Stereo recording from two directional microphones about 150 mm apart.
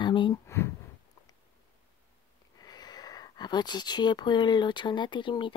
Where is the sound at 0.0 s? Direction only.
30° left (ahead or behind).